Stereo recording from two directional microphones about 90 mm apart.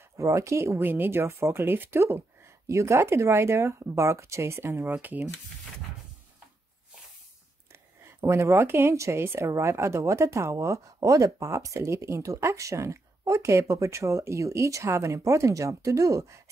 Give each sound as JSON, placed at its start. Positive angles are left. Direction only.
{"t": 0.2, "sound": "speech", "side_deg": -35}
{"t": 8.2, "sound": "a woman's voice", "side_deg": -30}